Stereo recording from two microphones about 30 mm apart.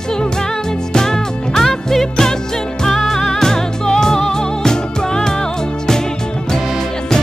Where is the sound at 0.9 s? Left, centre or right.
Centre.